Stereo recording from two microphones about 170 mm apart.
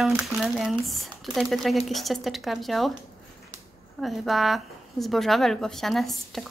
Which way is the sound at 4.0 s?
Centre (ahead or behind).